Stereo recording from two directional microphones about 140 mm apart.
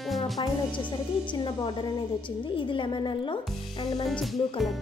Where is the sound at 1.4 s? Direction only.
35° left (ahead or behind).